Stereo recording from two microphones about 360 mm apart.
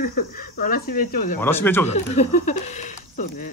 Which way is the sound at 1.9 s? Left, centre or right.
Centre.